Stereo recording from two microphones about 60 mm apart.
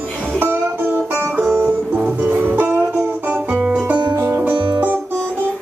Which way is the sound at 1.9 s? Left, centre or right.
Right.